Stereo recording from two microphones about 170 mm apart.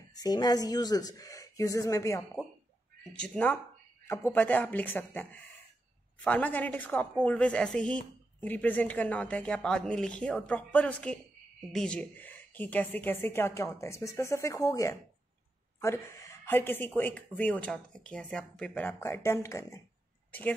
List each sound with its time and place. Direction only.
0.1 s speech: 20° left (ahead or behind)
3.1 s a woman's voice: 5° left (ahead or behind)
20.2 s a sound: 10° left (ahead or behind)